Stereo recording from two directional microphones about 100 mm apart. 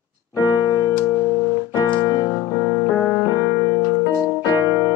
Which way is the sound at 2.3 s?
30° left (ahead or behind).